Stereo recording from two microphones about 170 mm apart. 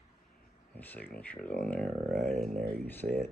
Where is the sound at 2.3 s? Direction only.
40° right (ahead or behind).